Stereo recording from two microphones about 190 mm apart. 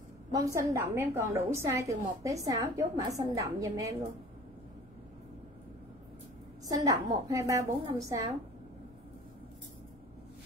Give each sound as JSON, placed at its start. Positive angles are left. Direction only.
{"t": 0.3, "sound": "a woman's voice", "side_deg": -15}
{"t": 6.7, "sound": "a woman's voice", "side_deg": -15}